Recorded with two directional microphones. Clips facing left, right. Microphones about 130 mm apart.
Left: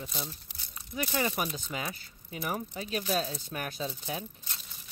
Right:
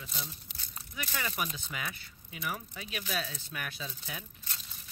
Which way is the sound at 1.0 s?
25° left (ahead or behind).